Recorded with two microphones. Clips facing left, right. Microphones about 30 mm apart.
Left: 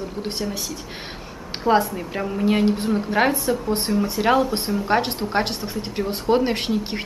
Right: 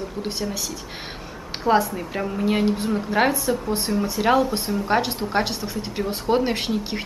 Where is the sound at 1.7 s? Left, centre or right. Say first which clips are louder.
Left 1 dB; right.